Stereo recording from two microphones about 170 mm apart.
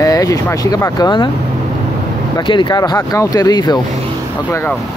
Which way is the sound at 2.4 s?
30° left (ahead or behind).